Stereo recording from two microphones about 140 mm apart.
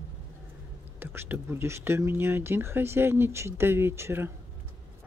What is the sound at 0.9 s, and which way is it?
Speech, 15° right (ahead or behind).